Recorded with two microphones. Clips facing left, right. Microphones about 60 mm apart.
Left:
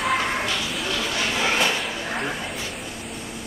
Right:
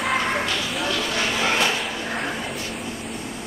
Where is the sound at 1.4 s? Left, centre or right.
Centre.